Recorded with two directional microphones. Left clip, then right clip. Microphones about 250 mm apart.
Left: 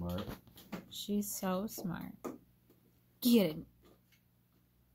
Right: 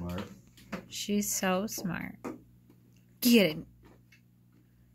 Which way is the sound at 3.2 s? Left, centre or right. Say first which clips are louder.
Right 6 dB; centre.